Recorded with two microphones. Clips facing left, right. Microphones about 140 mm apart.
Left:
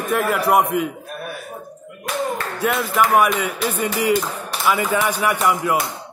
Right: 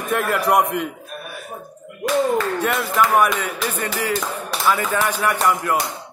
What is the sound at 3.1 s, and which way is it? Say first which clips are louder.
A man's voice: left 1 dB; 10° left (ahead or behind).